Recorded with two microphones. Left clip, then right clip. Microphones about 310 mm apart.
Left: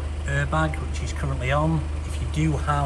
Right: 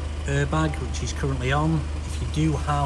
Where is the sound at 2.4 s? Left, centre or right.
Centre.